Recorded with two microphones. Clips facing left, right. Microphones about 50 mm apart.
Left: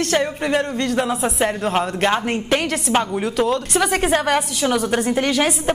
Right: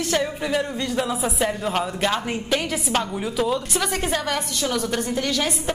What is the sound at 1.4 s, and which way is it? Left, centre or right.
Speech, left.